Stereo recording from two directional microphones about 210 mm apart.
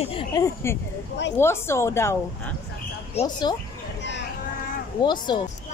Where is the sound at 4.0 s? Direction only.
55° left (ahead or behind).